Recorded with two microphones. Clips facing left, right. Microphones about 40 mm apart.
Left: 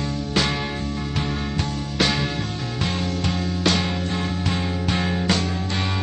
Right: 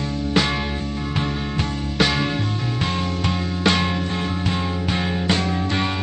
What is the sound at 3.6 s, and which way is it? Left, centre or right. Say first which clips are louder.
Music: right 3 dB; right.